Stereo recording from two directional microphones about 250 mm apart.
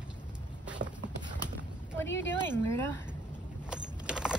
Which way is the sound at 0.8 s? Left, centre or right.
Right.